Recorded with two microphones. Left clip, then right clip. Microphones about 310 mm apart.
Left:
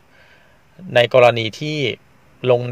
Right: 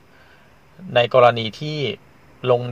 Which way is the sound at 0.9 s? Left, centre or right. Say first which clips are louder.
Left 2 dB; left.